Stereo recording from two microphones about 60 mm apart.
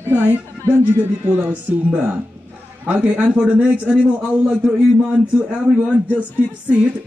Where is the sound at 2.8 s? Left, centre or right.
Right.